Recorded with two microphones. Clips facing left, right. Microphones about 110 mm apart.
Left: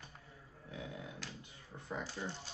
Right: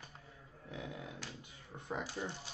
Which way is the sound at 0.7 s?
25° right (ahead or behind).